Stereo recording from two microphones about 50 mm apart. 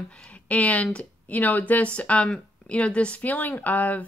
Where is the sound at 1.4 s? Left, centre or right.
Left.